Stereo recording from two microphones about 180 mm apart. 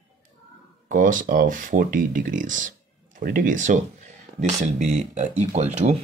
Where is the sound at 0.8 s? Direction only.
45° right (ahead or behind).